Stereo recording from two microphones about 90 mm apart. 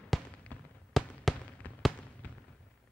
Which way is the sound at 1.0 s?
Centre (ahead or behind).